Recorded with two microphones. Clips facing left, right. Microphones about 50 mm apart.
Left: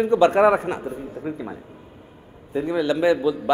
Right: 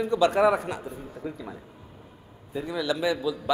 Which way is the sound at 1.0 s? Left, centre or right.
Centre.